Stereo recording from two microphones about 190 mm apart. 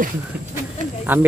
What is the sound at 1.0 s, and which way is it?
Speech, 10° right (ahead or behind).